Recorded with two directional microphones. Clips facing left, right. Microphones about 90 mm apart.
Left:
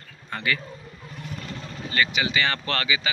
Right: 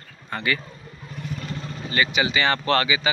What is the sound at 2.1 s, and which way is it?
Speech, 25° right (ahead or behind).